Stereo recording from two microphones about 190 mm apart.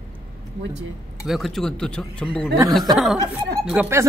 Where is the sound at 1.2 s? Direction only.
Centre (ahead or behind).